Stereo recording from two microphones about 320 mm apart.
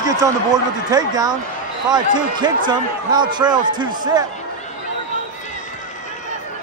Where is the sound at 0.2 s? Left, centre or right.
Centre.